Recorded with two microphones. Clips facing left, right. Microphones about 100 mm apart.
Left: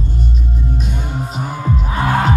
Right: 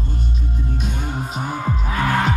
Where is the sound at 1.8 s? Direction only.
30° left (ahead or behind).